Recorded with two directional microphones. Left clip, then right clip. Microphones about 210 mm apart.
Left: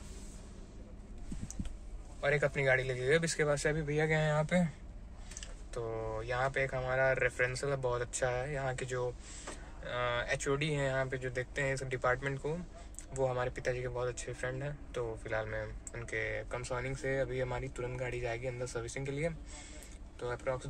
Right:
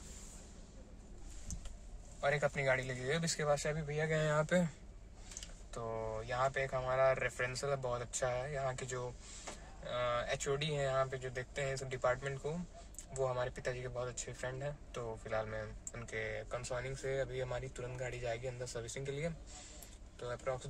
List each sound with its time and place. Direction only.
2.2 s speech: centre (ahead or behind)
4.1 s speech: 40° right (ahead or behind)
5.7 s speech: 5° right (ahead or behind)